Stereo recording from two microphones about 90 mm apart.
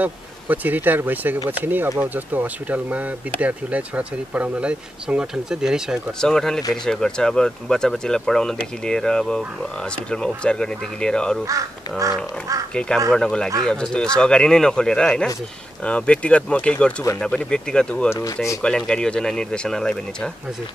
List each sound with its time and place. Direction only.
0.0 s speech: 20° right (ahead or behind)
6.2 s speech: 5° left (ahead or behind)
12.7 s speech: 10° left (ahead or behind)
18.1 s speech: 40° left (ahead or behind)
18.9 s speech: 10° left (ahead or behind)